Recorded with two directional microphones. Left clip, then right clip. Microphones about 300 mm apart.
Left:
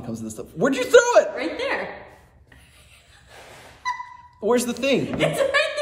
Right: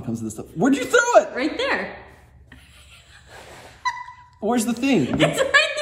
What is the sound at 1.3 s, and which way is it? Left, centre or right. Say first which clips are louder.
Speech: right 3 dB; right.